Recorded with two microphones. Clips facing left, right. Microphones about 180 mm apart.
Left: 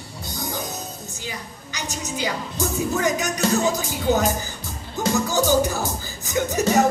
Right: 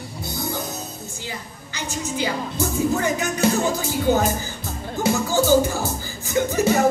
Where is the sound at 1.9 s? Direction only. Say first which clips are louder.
Right 2 dB; 15° left (ahead or behind).